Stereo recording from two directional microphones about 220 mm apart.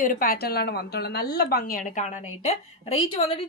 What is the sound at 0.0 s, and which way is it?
A woman's voice, 40° left (ahead or behind).